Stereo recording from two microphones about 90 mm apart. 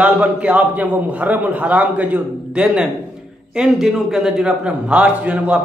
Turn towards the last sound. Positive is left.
turn(degrees=-10)  # may be behind; listen again after turning